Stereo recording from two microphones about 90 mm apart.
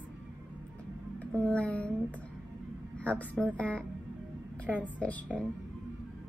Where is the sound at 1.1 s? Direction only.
15° left (ahead or behind).